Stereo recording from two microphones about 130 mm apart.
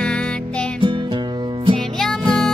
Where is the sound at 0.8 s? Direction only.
40° right (ahead or behind).